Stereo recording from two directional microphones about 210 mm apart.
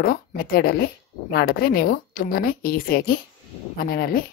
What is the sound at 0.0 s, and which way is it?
Speech, 45° left (ahead or behind).